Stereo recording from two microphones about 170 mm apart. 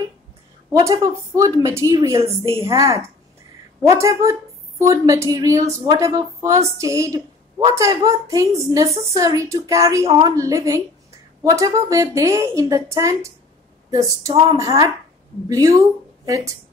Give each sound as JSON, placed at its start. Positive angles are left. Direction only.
{"t": 0.7, "sound": "a woman's voice", "side_deg": -20}